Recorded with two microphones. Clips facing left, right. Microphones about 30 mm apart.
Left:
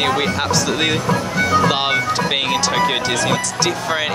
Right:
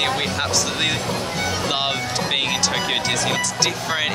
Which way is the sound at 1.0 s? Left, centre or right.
Left.